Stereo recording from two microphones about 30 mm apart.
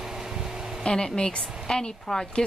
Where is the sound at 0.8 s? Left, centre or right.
Left.